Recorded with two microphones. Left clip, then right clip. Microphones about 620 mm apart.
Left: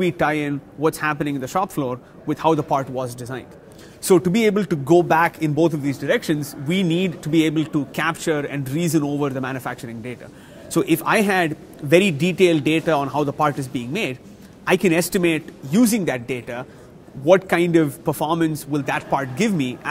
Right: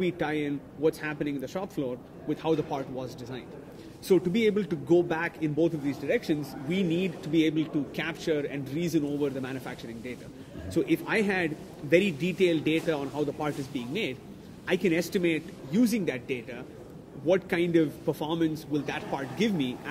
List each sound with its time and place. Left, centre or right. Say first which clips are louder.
0.0 s a man's voice: left 9 dB; left